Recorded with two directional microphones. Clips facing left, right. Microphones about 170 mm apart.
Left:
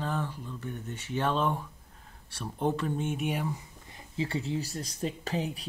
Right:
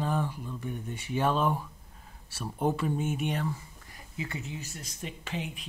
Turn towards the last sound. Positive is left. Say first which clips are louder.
# left 4 dB
turn(degrees=35)  # may be behind; listen again after turning